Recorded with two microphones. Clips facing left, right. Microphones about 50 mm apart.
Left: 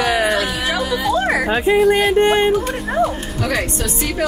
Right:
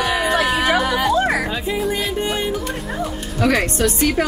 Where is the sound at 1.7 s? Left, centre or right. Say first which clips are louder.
Left 10 dB; left.